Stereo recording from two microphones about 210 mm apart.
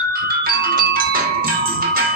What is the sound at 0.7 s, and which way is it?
Music, 45° right (ahead or behind).